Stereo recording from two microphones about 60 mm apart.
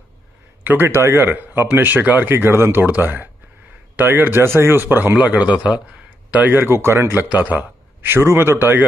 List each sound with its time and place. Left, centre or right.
0.7 s a man's voice: right
1.7 s speech: right
5.2 s speech: right
6.5 s a man's voice: right
7.2 s speech: right
8.1 s a man's voice: right